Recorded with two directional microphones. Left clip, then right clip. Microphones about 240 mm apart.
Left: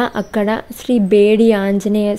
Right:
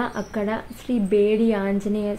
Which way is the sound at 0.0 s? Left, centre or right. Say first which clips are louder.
Left 9 dB; left.